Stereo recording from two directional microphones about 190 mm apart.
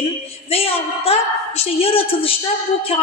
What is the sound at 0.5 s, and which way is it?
A woman's voice, 30° left (ahead or behind).